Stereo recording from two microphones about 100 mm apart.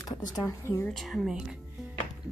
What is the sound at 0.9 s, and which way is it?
Speech, centre (ahead or behind).